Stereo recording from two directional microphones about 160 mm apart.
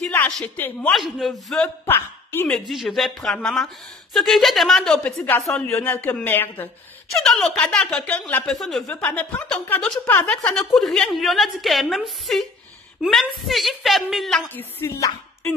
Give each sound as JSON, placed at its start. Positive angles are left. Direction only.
{"t": 0.0, "sound": "speech", "side_deg": 5}
{"t": 0.9, "sound": "speech", "side_deg": 0}
{"t": 1.9, "sound": "a woman's voice", "side_deg": 15}
{"t": 2.7, "sound": "a woman's voice", "side_deg": 0}
{"t": 14.5, "sound": "a woman's voice", "side_deg": 15}